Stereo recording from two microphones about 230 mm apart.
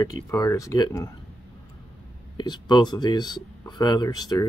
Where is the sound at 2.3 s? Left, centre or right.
Centre.